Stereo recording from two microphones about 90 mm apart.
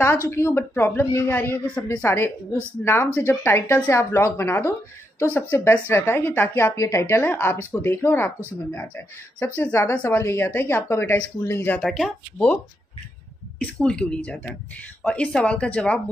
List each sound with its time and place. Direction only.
0.3 s speech: 30° left (ahead or behind)
9.6 s speech: 25° left (ahead or behind)
11.8 s speech: centre (ahead or behind)
13.6 s speech: 10° left (ahead or behind)